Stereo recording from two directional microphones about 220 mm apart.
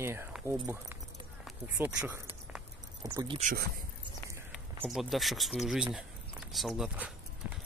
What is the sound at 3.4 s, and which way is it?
Speech, 40° right (ahead or behind).